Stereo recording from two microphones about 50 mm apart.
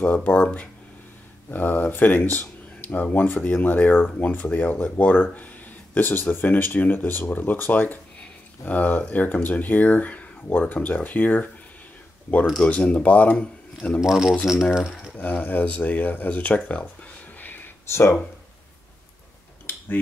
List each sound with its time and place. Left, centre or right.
0.0 s speech: left
1.5 s speech: left
12.6 s speech: left
14.0 s speech: centre
15.1 s speech: left
17.8 s speech: left